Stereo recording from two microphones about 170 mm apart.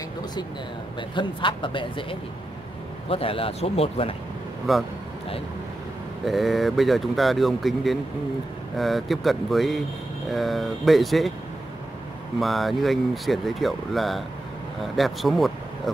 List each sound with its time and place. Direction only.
1.1 s speech: 30° left (ahead or behind)
4.7 s speech: centre (ahead or behind)
6.2 s speech: centre (ahead or behind)
12.4 s speech: centre (ahead or behind)